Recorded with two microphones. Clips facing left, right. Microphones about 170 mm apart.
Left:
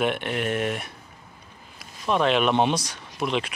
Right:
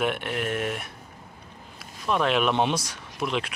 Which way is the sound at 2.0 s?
Centre (ahead or behind).